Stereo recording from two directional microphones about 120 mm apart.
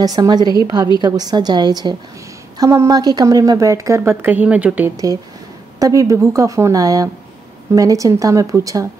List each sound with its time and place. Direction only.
0.0 s a woman's voice: 30° right (ahead or behind); by 4.9 s 10° right (ahead or behind)
4.9 s a woman's voice: 30° right (ahead or behind)